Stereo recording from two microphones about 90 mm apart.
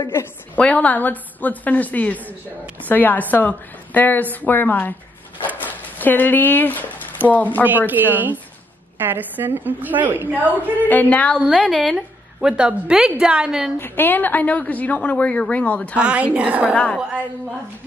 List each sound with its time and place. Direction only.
0.1 s a woman's voice: 25° left (ahead or behind)
0.6 s a woman's voice: 15° left (ahead or behind)
7.2 s a woman's voice: 20° right (ahead or behind)
10.8 s a woman's voice: 20° left (ahead or behind)
11.3 s a woman's voice: 5° right (ahead or behind)
13.7 s a woman's voice: 25° left (ahead or behind)
16.0 s a woman's voice: 10° right (ahead or behind)
16.7 s a woman's voice: 15° left (ahead or behind)